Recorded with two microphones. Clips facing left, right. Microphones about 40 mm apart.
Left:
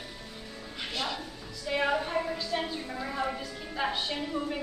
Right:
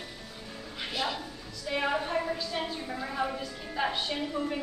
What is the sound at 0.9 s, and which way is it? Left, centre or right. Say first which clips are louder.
A woman's voice: right 2 dB; centre.